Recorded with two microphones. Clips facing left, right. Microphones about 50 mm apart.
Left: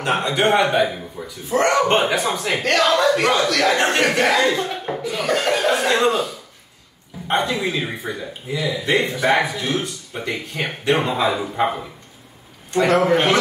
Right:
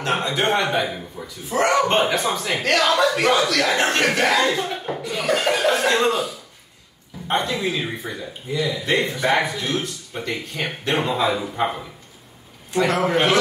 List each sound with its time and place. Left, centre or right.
0.0 s speech: centre